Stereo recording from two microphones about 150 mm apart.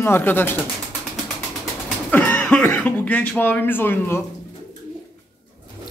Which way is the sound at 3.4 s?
15° left (ahead or behind).